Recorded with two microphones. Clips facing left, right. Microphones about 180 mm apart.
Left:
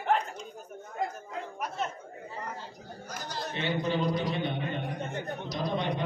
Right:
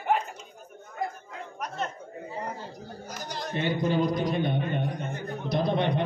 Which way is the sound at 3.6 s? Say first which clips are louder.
Right 4 dB; 50° right (ahead or behind).